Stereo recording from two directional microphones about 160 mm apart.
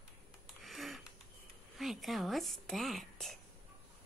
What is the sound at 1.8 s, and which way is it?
Speech, centre (ahead or behind).